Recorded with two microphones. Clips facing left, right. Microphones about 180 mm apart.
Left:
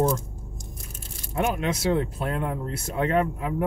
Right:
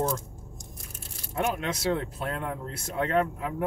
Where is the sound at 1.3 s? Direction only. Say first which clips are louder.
Left 3 dB; 10° left (ahead or behind).